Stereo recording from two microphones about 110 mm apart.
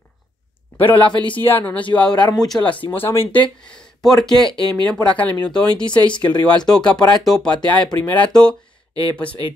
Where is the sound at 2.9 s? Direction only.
20° left (ahead or behind).